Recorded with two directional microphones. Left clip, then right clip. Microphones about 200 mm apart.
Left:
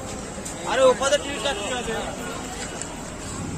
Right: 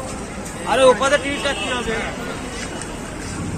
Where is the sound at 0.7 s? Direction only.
45° right (ahead or behind).